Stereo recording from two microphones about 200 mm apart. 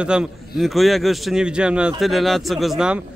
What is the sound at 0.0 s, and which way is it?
Speech, 5° right (ahead or behind).